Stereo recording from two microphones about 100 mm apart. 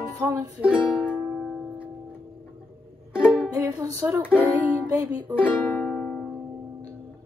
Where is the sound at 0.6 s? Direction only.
10° right (ahead or behind).